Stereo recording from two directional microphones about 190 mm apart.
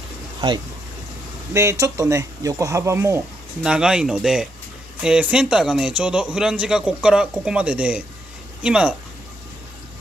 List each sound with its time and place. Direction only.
1.5 s speech: 15° right (ahead or behind)
3.6 s a man's voice: 5° right (ahead or behind)